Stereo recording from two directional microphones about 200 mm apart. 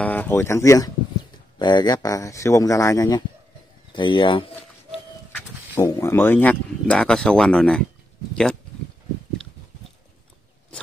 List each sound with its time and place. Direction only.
0.0 s speech: 10° left (ahead or behind); by 4.6 s 25° left (ahead or behind)
5.8 s speech: 15° left (ahead or behind)